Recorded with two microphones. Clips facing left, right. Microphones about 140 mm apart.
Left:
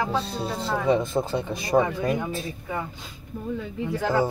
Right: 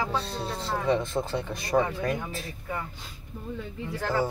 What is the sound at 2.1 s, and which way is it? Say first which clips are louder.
Speech: left 6 dB; 75° left (ahead or behind).